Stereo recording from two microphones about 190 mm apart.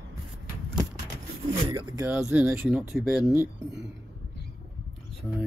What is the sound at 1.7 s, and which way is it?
Speech, 15° right (ahead or behind).